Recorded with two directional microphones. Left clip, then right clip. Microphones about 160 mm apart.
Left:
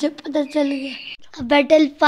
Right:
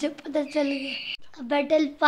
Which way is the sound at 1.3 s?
45° left (ahead or behind).